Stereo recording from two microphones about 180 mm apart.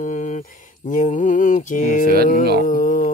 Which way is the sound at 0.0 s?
45° left (ahead or behind).